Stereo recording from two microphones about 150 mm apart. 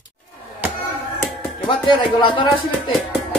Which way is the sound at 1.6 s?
35° left (ahead or behind).